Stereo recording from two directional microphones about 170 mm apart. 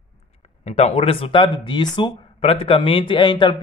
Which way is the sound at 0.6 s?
40° left (ahead or behind).